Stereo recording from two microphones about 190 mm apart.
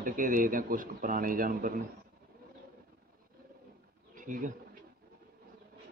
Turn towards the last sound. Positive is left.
turn(degrees=-45)  # may be behind; listen again after turning